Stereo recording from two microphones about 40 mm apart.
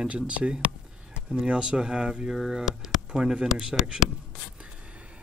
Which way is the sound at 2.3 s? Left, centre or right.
Centre.